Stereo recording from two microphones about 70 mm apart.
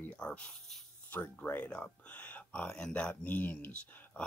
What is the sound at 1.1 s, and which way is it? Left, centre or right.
Speech, left.